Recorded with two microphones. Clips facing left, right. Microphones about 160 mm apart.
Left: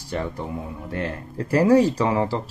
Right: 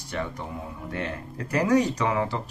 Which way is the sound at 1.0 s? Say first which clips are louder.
Left 4 dB; 30° left (ahead or behind).